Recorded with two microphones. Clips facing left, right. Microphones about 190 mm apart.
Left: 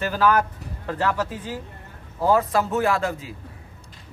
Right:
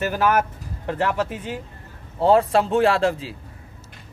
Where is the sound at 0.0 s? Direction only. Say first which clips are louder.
Even; 20° right (ahead or behind).